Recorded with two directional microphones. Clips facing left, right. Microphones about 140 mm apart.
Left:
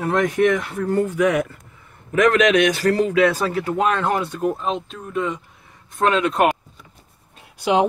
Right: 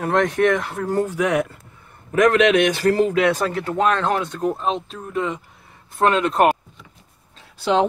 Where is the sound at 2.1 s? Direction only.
35° right (ahead or behind).